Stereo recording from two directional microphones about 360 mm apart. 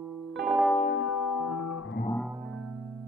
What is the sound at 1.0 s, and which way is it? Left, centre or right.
Music, left.